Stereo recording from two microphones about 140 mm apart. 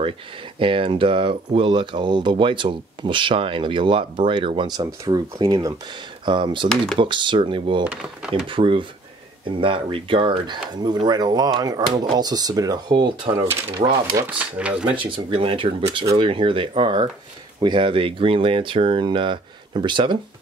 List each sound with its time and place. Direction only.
0.6 s speech: 40° right (ahead or behind)
7.8 s speech: 5° right (ahead or behind)
8.3 s speech: 40° right (ahead or behind)
14.2 s speech: 10° right (ahead or behind)
15.0 s speech: 35° right (ahead or behind)